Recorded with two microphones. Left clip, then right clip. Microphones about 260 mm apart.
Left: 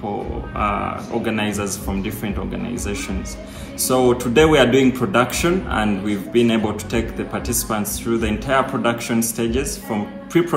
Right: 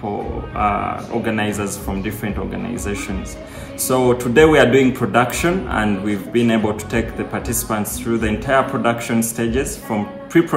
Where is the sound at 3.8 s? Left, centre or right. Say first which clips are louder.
Right 1 dB; centre.